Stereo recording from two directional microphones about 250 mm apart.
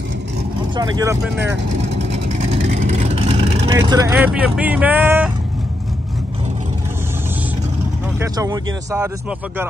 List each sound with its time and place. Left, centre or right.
0.7 s speech: centre
2.2 s vehicle: right
3.7 s speech: centre
8.2 s speech: centre